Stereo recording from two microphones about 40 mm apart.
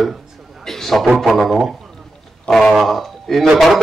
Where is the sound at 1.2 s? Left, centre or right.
Centre.